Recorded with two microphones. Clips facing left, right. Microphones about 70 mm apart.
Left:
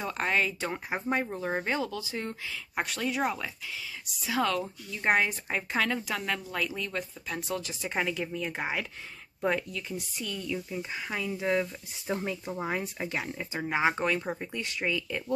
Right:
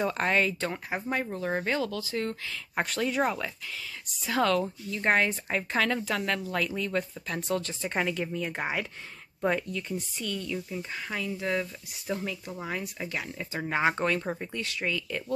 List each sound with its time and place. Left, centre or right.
0.0 s speech: centre
0.7 s speech: centre
2.7 s speech: centre
14.6 s speech: centre